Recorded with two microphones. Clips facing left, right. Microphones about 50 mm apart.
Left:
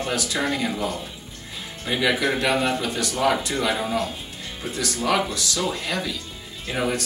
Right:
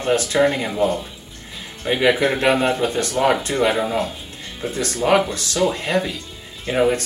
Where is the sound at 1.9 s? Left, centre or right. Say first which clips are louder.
Right 5 dB; right.